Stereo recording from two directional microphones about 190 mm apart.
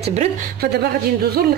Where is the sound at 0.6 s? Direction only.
55° right (ahead or behind).